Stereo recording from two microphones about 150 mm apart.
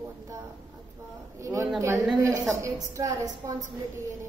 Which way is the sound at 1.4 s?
20° right (ahead or behind).